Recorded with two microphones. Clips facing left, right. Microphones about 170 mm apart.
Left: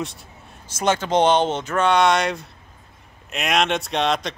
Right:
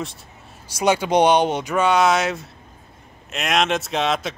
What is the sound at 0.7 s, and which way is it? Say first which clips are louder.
A man's voice: right 2 dB; 10° right (ahead or behind).